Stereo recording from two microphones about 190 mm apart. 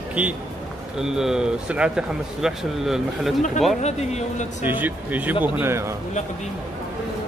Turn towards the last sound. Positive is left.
turn(degrees=-15)  # may be behind; listen again after turning